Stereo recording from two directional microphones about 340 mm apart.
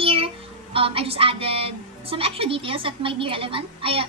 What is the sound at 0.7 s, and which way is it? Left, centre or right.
A woman's voice, centre.